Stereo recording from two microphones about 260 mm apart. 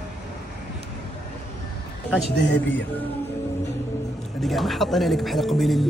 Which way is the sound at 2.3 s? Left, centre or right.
Left.